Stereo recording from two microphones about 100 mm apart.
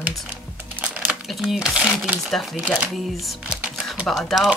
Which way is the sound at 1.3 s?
Centre (ahead or behind).